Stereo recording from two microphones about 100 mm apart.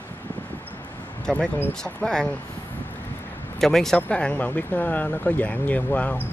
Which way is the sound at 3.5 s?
5° left (ahead or behind).